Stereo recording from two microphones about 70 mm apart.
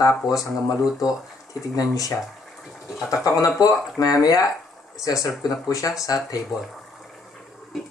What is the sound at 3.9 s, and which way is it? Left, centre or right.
Speech, left.